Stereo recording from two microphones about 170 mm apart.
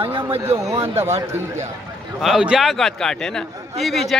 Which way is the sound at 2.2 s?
5° right (ahead or behind).